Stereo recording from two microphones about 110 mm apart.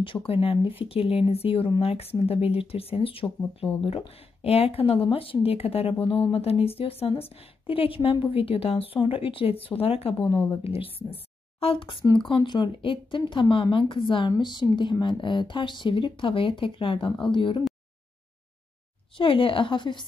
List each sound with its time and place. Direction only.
0.3 s a woman's voice: 60° left (ahead or behind)
4.4 s a woman's voice: 60° left (ahead or behind)
10.1 s speech: 50° left (ahead or behind)
10.6 s a woman's voice: 60° left (ahead or behind)
19.1 s speech: 55° left (ahead or behind)